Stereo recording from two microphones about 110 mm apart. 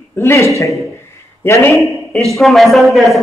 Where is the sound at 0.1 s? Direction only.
25° left (ahead or behind).